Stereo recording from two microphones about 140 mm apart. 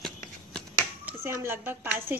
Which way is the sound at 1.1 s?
15° right (ahead or behind).